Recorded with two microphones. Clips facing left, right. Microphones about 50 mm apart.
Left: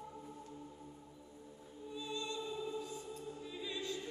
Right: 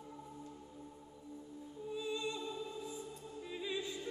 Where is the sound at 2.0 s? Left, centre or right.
Centre.